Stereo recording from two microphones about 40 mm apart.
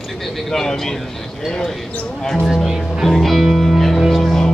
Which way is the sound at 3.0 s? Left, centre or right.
Centre.